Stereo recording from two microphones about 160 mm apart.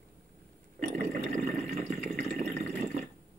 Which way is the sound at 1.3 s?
45° right (ahead or behind).